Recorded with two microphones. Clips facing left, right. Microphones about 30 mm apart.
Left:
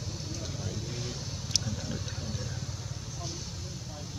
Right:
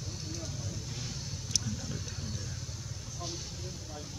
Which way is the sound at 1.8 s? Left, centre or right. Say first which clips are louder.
Left 3 dB; left.